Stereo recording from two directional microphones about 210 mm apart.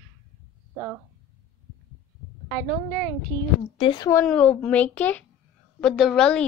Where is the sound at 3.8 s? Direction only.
25° left (ahead or behind).